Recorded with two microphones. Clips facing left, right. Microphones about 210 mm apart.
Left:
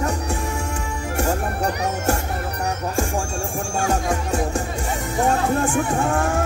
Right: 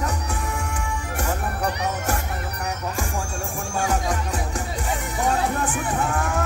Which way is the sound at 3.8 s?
25° left (ahead or behind).